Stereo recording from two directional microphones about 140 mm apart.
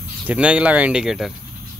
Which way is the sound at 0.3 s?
10° right (ahead or behind).